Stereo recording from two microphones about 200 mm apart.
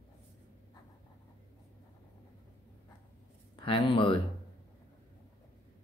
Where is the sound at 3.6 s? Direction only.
25° left (ahead or behind).